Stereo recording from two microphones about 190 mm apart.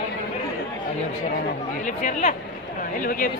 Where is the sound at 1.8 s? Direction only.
35° left (ahead or behind).